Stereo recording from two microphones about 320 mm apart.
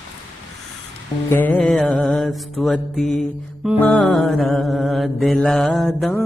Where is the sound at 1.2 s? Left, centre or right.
Centre.